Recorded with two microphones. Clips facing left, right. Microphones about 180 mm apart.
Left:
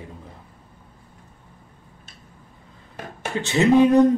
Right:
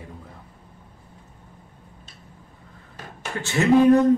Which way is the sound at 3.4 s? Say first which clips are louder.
Left 1 dB; 20° left (ahead or behind).